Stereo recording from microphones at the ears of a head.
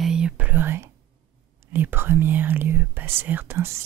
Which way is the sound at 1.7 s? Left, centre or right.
Right.